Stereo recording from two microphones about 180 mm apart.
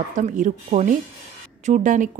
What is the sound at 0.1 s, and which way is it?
Speech, 45° right (ahead or behind).